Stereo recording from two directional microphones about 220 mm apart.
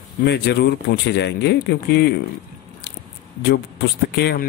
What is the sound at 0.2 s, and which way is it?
Speech, 50° left (ahead or behind).